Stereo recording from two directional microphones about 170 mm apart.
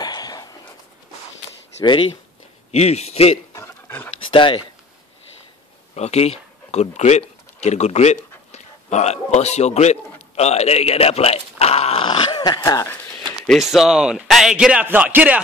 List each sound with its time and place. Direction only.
0.0 s a sound: 25° left (ahead or behind)
2.7 s a man's voice: 40° left (ahead or behind)
3.5 s pant: 15° left (ahead or behind)
4.3 s speech: 30° left (ahead or behind)
5.9 s speech: 40° left (ahead or behind); by 13.0 s 15° left (ahead or behind)
13.5 s a man's voice: centre (ahead or behind)